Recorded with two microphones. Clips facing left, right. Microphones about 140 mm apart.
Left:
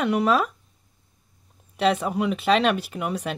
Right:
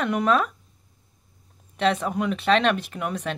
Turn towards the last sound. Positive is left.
turn(degrees=5)  # may be behind; listen again after turning